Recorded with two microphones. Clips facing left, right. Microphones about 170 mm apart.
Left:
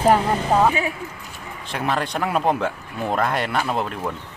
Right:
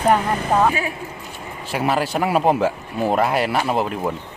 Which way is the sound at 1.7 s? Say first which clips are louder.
Right 3 dB; 5° right (ahead or behind).